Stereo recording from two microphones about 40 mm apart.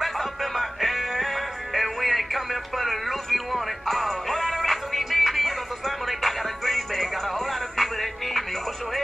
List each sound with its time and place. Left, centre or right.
0.0 s music: centre